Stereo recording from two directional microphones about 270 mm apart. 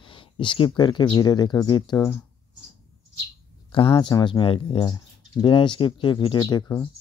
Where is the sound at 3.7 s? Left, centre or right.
Centre.